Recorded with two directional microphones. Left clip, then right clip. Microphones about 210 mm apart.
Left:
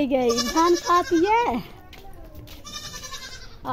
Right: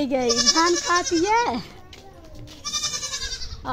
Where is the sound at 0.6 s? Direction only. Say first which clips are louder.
Left 1 dB; 10° left (ahead or behind).